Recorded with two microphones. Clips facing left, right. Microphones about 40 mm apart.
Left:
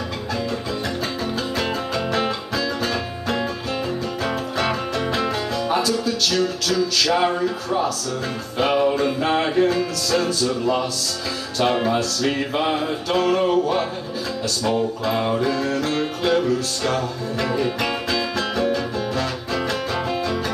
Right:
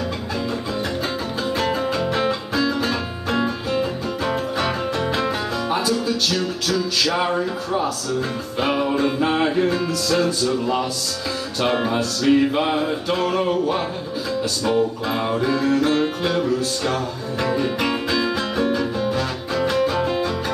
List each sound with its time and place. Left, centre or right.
1.6 s music: centre